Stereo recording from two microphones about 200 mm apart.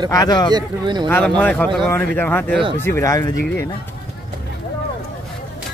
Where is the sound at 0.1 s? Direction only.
20° left (ahead or behind).